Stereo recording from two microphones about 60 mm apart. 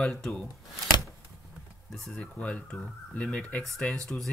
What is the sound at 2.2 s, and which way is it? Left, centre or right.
Speech, centre.